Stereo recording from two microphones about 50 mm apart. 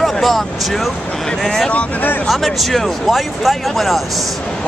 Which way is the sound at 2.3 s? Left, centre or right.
Centre.